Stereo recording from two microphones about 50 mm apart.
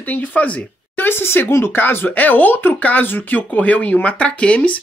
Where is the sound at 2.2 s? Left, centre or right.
Left.